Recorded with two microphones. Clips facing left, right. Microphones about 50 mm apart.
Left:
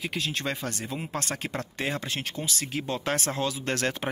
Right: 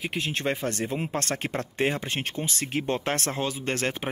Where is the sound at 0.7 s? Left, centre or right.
Right.